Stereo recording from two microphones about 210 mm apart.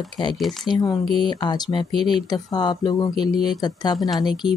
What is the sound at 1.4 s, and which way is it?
Speech, 20° left (ahead or behind).